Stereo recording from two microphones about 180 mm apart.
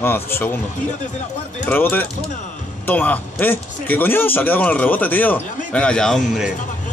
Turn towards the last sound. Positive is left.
turn(degrees=0)  # may be behind; listen again after turning